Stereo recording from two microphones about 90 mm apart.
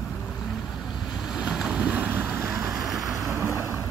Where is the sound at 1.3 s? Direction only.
10° right (ahead or behind).